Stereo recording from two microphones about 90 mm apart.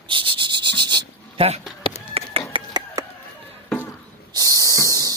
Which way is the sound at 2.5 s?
70° right (ahead or behind).